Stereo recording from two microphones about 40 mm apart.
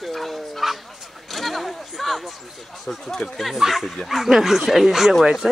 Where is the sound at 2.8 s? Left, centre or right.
Centre.